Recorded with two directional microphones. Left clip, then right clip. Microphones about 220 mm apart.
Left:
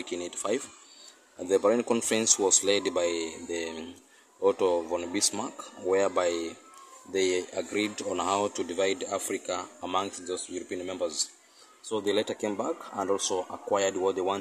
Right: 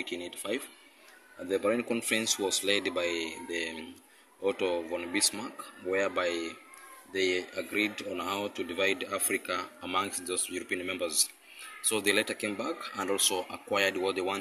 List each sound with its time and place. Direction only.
0.0 s speech: 15° left (ahead or behind)